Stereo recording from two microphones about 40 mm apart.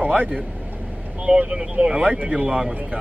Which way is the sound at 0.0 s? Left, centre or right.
Right.